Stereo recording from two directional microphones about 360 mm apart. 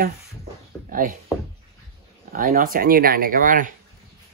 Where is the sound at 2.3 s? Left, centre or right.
Right.